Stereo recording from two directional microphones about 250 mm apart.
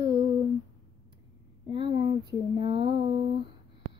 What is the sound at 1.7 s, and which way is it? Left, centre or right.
Speech, centre.